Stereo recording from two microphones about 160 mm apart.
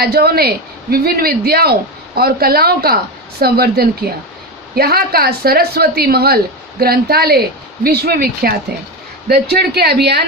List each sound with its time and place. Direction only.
0.0 s speech: 75° right (ahead or behind)
9.3 s speech: 85° right